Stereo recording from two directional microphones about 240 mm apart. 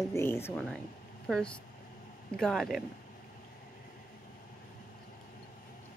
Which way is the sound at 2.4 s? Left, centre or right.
Centre.